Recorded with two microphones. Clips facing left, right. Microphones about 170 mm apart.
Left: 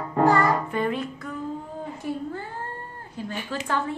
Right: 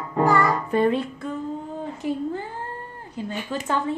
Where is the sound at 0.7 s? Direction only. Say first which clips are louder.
Right 5 dB; 30° right (ahead or behind).